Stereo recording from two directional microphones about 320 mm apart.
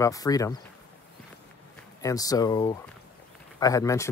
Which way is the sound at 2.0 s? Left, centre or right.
Centre.